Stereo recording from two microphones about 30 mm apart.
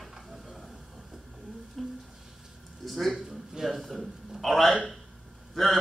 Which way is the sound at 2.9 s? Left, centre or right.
Centre.